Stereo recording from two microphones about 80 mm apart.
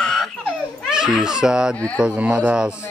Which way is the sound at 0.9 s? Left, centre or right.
Centre.